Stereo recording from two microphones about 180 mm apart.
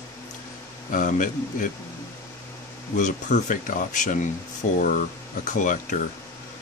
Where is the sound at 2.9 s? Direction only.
45° left (ahead or behind).